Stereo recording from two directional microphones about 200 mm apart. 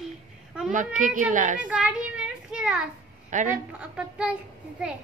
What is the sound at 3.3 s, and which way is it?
Speech, 40° right (ahead or behind).